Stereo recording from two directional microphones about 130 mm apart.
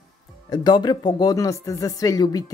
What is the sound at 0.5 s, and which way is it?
Speech, 35° left (ahead or behind).